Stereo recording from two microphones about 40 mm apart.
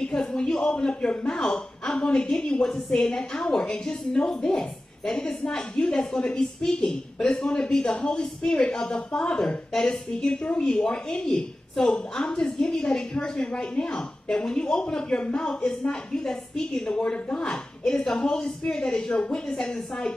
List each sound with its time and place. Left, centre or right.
0.0 s a sound: centre
0.5 s a woman's voice: centre
18.2 s a woman's voice: centre